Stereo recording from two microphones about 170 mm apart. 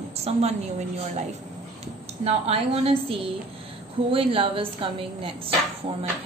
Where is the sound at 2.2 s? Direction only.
35° right (ahead or behind).